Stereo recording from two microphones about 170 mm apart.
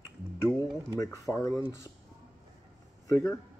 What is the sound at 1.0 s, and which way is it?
Speech, 15° left (ahead or behind).